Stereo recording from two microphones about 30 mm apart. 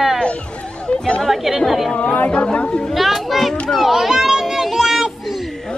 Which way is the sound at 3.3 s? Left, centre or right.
Centre.